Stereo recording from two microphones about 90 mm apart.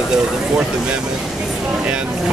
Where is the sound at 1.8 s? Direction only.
10° right (ahead or behind).